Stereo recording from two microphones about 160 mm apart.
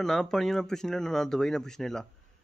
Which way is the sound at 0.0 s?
Centre (ahead or behind).